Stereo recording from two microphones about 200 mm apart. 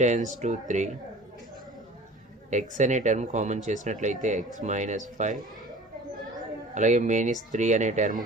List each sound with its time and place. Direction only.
0.0 s speech: 35° right (ahead or behind)
2.8 s speech: 35° right (ahead or behind)
6.7 s speech: 35° right (ahead or behind)